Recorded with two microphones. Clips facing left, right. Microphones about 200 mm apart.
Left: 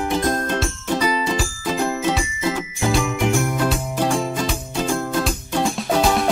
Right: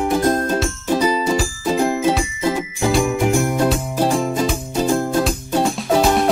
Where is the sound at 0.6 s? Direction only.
5° right (ahead or behind).